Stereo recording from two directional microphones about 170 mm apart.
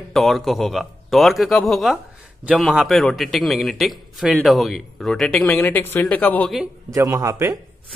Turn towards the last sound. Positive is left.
turn(degrees=-20)  # may be behind; listen again after turning